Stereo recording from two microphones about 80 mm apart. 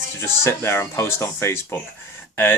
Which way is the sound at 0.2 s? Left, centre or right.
Left.